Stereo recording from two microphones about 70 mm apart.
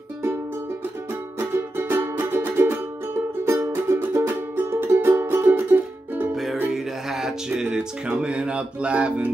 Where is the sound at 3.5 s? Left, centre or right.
Right.